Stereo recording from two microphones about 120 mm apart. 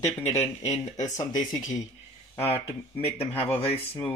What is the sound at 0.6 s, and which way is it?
Speech, 75° left (ahead or behind).